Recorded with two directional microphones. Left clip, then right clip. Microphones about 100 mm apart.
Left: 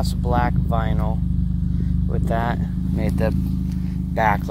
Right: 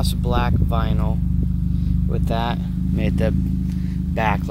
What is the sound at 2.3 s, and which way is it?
Speech, 20° right (ahead or behind).